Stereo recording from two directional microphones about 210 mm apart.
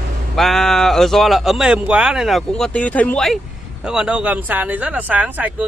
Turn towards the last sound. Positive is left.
turn(degrees=-5)  # may be behind; listen again after turning